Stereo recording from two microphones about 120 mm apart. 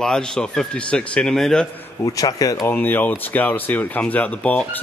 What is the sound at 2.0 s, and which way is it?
Speech, 30° left (ahead or behind).